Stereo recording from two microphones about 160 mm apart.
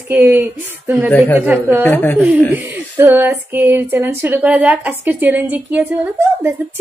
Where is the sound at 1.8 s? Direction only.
10° left (ahead or behind).